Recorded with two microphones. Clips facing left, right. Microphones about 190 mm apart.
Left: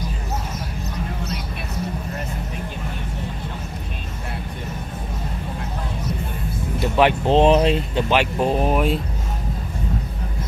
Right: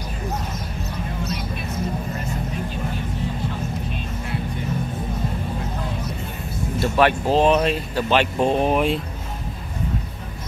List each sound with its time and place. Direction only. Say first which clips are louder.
6.8 s speech: left 1 dB; 15° left (ahead or behind)
8.1 s speech: right 1 dB; 10° left (ahead or behind)